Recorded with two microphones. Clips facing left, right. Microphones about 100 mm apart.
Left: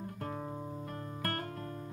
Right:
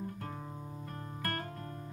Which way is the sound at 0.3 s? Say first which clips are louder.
Left 4 dB; 30° left (ahead or behind).